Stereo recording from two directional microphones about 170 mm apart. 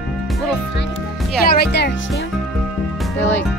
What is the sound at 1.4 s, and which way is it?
Speech, 65° left (ahead or behind).